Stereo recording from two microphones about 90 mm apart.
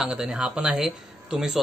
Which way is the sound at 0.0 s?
10° right (ahead or behind).